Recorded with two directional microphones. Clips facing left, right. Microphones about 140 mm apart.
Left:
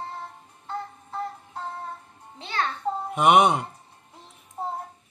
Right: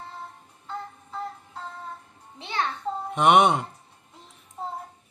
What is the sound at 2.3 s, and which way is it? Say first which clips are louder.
Music: even; 15° right (ahead or behind).